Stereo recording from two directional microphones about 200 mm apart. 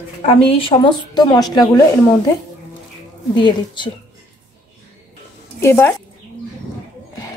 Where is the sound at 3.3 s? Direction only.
25° left (ahead or behind).